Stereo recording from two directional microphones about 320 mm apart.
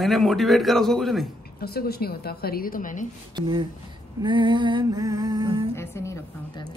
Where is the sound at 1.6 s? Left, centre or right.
Left.